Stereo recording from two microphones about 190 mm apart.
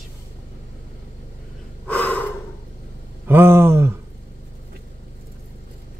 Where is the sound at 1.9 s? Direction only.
10° left (ahead or behind).